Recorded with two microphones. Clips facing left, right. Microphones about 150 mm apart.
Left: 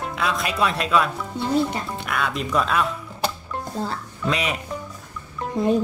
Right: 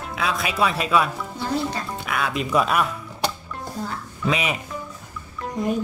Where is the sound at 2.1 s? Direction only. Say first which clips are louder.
Right 1 dB; 5° right (ahead or behind).